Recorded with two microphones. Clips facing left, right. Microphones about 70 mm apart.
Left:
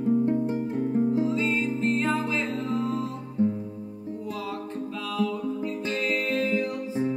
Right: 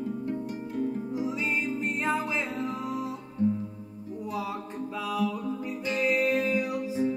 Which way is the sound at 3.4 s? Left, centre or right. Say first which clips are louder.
Left 2 dB; left.